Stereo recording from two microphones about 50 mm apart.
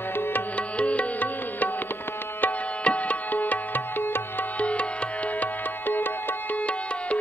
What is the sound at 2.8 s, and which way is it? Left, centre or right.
Music, left.